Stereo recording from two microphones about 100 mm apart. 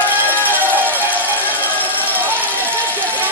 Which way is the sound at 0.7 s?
20° right (ahead or behind).